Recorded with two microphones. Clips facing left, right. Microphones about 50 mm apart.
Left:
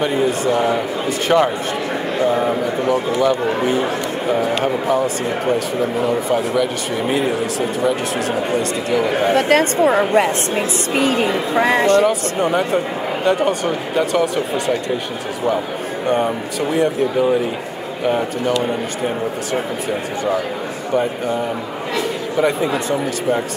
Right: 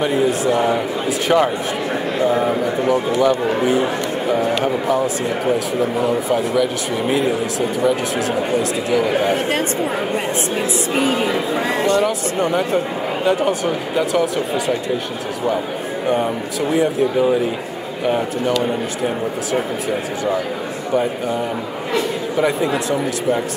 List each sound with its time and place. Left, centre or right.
0.0 s speech: centre
9.3 s speech: left
12.1 s speech: centre
16.7 s speech: centre
18.6 s speech: centre
21.9 s speech: centre